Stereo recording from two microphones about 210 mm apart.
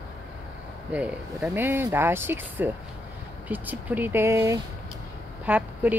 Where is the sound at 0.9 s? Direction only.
5° right (ahead or behind).